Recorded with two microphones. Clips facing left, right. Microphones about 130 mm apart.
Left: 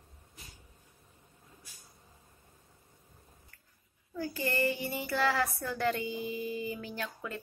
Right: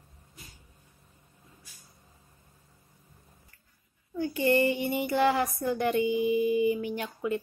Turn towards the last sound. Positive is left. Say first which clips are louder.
# right 8 dB
turn(degrees=-20)  # may be behind; listen again after turning